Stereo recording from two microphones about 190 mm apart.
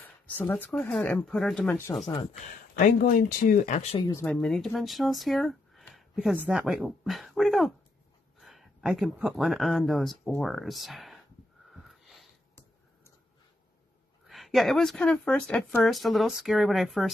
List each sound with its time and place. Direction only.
0.0 s speech: 10° left (ahead or behind)
2.4 s speech: 45° left (ahead or behind)
4.1 s speech: 10° left (ahead or behind)
11.7 s wheeze: centre (ahead or behind)
14.2 s speech: centre (ahead or behind)